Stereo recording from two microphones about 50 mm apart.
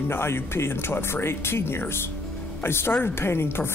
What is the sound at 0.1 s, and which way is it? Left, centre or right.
Speech, left.